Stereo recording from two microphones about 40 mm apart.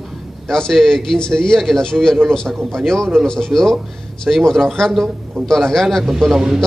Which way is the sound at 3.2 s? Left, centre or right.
Centre.